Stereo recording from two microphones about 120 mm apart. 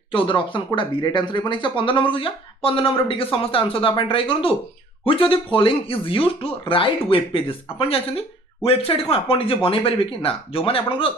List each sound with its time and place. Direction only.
0.1 s speech: 45° left (ahead or behind)